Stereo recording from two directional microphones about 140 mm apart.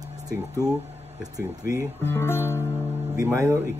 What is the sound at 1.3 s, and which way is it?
Speech, 25° right (ahead or behind).